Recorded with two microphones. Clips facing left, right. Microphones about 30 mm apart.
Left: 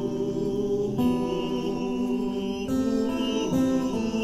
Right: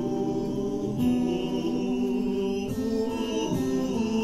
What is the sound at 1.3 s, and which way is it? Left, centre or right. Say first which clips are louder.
Music: even; centre.